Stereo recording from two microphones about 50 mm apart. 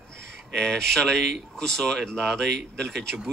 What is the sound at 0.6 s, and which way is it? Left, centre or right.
A man's voice, centre.